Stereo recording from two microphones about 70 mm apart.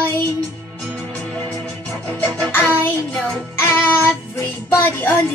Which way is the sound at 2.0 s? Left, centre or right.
Left.